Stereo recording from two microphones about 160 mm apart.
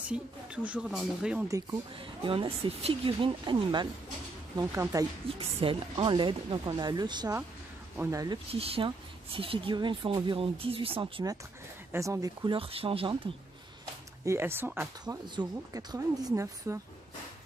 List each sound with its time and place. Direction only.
0.1 s speech: 5° right (ahead or behind)
2.0 s speech: 35° right (ahead or behind)
5.2 s speech: 35° right (ahead or behind); by 8.4 s 20° right (ahead or behind)
8.5 s speech: 35° right (ahead or behind)
11.9 s speech: 20° right (ahead or behind)
12.5 s speech: 35° right (ahead or behind)
14.2 s speech: 15° right (ahead or behind)
15.0 s speech: 25° right (ahead or behind)